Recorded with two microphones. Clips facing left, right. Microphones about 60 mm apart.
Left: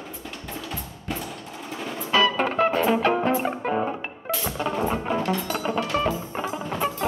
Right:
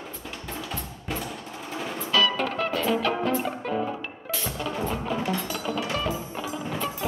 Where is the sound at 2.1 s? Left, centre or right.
Left.